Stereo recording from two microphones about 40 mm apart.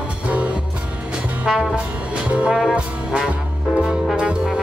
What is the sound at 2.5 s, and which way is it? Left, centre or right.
Music, centre.